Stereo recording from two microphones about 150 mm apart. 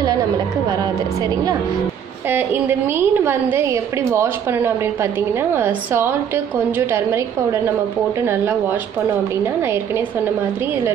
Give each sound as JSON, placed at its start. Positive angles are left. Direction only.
{"t": 2.2, "sound": "a woman's voice", "side_deg": -15}